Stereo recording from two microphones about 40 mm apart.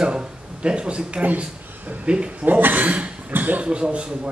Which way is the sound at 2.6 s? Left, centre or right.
Right.